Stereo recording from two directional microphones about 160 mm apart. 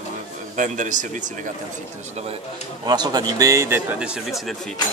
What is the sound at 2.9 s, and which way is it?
Speech, 25° right (ahead or behind).